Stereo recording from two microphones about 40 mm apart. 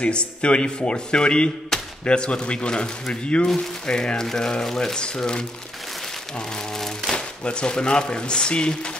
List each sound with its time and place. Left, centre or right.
0.0 s speech: left
1.7 s a sound: centre
2.0 s speech: left
7.1 s speech: left